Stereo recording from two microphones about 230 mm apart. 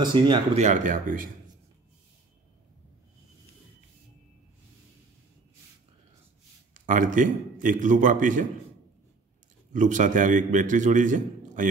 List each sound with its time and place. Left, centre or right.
0.0 s speech: centre
0.7 s a man's voice: right
6.7 s a man's voice: right
9.7 s a man's voice: right